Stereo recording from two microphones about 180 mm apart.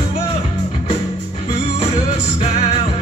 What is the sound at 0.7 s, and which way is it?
Music, 30° left (ahead or behind).